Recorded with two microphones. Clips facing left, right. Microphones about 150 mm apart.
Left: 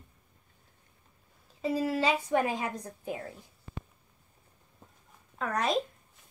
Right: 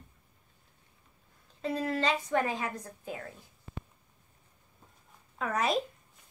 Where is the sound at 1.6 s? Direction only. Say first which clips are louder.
Left 2 dB; 5° left (ahead or behind).